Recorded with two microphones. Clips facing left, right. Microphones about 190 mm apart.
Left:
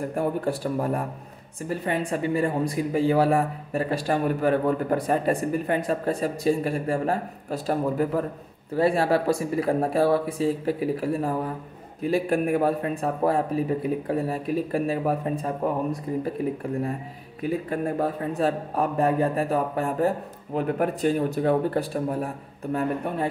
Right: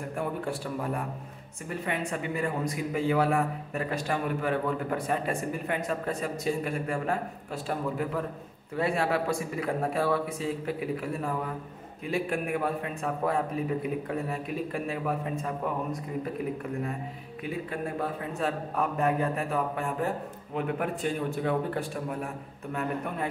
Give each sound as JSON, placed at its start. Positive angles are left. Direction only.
{"t": 0.1, "sound": "a man's voice", "side_deg": 40}
{"t": 17.4, "sound": "a man's voice", "side_deg": 40}